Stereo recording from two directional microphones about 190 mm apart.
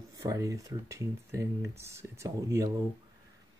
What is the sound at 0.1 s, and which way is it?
Speech, 20° right (ahead or behind).